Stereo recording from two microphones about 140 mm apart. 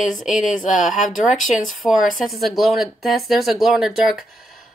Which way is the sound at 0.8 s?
65° left (ahead or behind).